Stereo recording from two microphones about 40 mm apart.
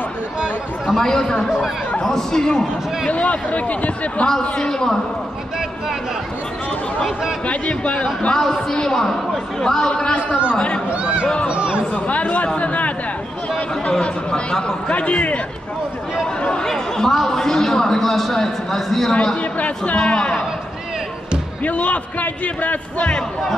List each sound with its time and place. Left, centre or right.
0.9 s a man's voice: centre
3.1 s a man's voice: left
4.4 s a man's voice: centre
7.4 s a man's voice: left
8.8 s a man's voice: centre
10.5 s speech: left
10.9 s speech: right
11.9 s a man's voice: left
13.8 s speech: left
14.9 s a man's voice: left
16.6 s a man's voice: centre
20.1 s speech: left
21.6 s a man's voice: left